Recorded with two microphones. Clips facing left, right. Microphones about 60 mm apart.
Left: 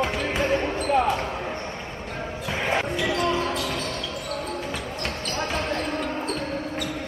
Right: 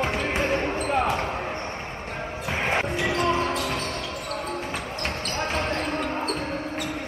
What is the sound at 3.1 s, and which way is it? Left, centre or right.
Basketball bounce, right.